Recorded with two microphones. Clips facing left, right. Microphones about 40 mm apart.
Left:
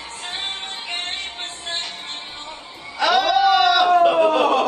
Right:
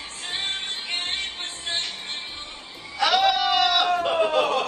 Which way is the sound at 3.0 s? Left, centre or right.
Left.